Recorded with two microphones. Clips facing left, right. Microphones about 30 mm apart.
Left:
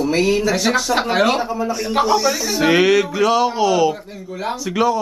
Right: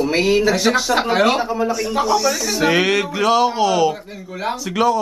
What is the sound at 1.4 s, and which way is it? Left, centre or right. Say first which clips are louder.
Speech: right 2 dB; centre.